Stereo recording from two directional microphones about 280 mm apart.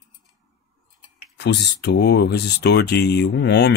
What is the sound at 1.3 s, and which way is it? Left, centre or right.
Speech, left.